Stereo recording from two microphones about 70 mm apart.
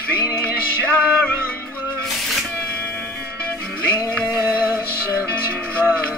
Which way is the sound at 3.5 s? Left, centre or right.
Centre.